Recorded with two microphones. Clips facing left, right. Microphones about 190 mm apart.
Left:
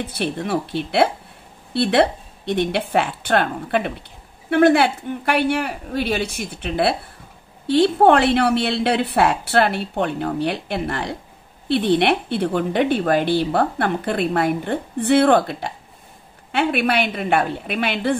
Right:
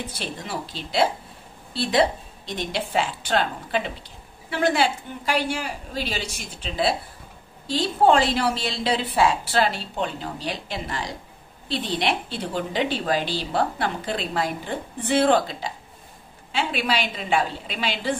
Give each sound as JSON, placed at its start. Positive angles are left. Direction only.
{"t": 0.0, "sound": "a woman's voice", "side_deg": 60}